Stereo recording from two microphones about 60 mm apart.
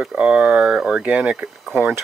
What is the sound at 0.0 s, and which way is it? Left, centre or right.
Speech, centre.